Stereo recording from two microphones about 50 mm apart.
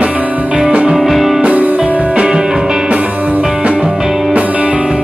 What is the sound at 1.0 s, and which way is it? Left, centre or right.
Music, centre.